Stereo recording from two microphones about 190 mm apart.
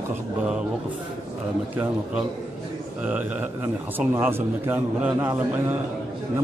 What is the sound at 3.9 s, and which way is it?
A man's voice, 10° right (ahead or behind).